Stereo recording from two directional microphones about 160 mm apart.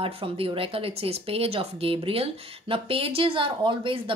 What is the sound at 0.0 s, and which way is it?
Speech, 35° right (ahead or behind).